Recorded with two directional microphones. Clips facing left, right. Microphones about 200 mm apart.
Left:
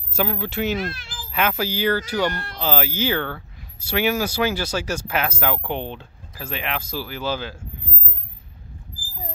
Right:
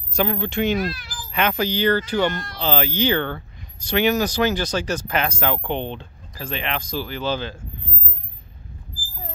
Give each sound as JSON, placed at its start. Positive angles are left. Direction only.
{"t": 0.1, "sound": "speech", "side_deg": 5}
{"t": 0.7, "sound": "meow", "side_deg": 25}
{"t": 1.3, "sound": "speech", "side_deg": 5}